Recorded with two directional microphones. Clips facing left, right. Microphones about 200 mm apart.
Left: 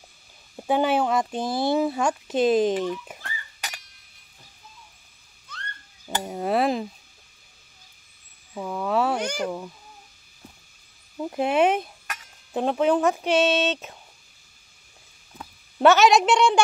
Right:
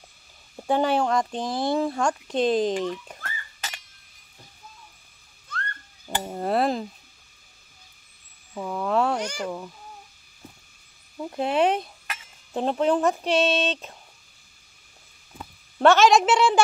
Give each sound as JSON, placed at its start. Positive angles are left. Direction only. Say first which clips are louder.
{"t": 0.6, "sound": "speech", "louder": "left 1 dB", "side_deg": 5}
{"t": 6.0, "sound": "a sound", "louder": "left 1 dB", "side_deg": 0}
{"t": 8.5, "sound": "a sound", "louder": "even", "side_deg": 5}
{"t": 9.2, "sound": "speech", "louder": "left 3 dB", "side_deg": 60}
{"t": 11.1, "sound": "speech", "louder": "left 2 dB", "side_deg": 10}
{"t": 15.3, "sound": "speech", "louder": "left 1 dB", "side_deg": 0}